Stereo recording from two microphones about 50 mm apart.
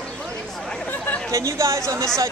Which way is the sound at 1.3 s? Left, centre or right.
Right.